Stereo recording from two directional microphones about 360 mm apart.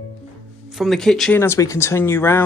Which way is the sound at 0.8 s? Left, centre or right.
Centre.